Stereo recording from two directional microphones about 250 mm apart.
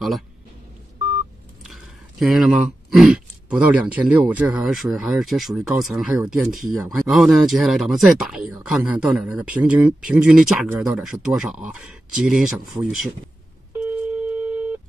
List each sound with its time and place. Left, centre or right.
1.6 s speech: centre
13.8 s telephone: centre